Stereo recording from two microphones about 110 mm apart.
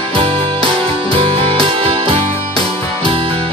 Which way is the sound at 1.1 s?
55° right (ahead or behind).